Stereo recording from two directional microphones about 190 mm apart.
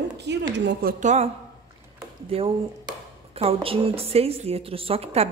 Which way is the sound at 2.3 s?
30° right (ahead or behind).